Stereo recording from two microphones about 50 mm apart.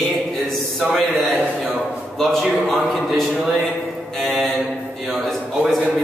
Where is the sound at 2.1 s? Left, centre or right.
Centre.